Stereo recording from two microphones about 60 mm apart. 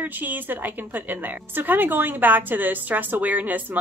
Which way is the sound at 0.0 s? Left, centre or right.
Right.